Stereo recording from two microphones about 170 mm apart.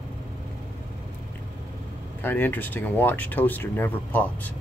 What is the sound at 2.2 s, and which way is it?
Speech, 10° left (ahead or behind).